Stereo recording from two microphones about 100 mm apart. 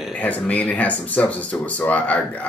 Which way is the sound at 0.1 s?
15° left (ahead or behind).